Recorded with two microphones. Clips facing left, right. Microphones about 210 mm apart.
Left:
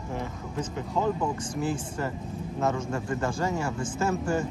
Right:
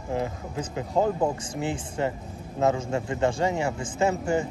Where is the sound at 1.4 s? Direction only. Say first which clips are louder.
Even; 80° right.